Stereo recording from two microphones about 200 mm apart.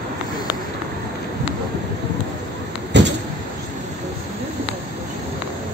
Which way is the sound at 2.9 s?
60° right (ahead or behind).